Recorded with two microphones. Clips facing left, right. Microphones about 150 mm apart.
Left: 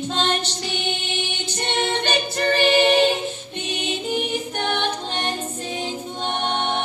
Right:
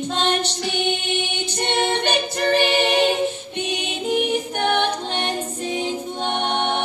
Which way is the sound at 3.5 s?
10° right (ahead or behind).